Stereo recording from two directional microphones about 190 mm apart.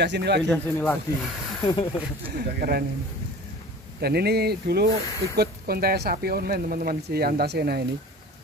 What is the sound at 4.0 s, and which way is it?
Speech, 55° right (ahead or behind).